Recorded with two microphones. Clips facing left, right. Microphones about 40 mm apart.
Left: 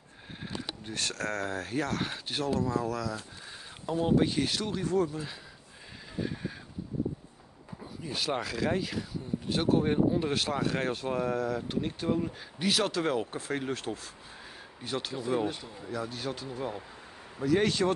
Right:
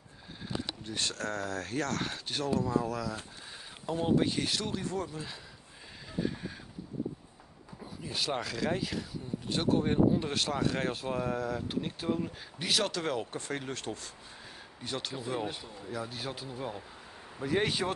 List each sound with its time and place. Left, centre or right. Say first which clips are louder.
0.9 s speech: left 2 dB; left
1.6 s speech: left 2 dB; centre
7.8 s speech: left 1 dB; centre
17.6 s speech: left 3 dB; centre